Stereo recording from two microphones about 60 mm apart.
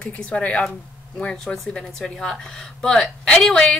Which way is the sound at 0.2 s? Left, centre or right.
Centre.